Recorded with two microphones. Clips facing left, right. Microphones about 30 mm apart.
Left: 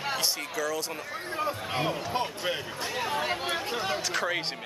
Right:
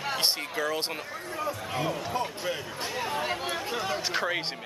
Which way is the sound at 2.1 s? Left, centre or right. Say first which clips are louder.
Left 1 dB; left.